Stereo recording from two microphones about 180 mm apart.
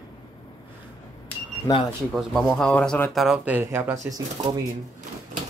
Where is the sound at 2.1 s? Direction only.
Centre (ahead or behind); by 4.2 s 15° right (ahead or behind).